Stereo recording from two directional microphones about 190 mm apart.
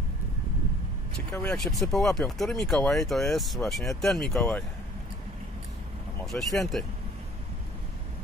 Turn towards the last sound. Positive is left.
turn(degrees=0)  # may be behind; listen again after turning